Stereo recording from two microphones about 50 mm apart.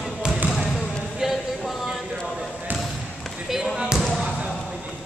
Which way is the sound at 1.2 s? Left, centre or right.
Centre.